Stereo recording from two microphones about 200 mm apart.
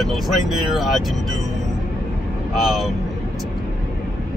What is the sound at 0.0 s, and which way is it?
Speech, centre (ahead or behind).